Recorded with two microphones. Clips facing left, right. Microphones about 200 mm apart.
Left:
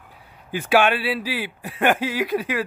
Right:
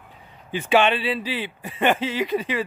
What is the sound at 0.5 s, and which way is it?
Speech, 10° left (ahead or behind).